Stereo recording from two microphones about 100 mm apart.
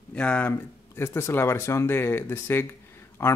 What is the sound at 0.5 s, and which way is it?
Speech, 25° left (ahead or behind).